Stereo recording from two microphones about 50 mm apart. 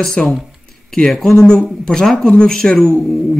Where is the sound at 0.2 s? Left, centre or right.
Left.